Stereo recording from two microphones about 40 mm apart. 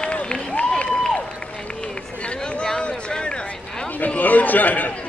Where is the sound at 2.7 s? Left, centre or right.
Left.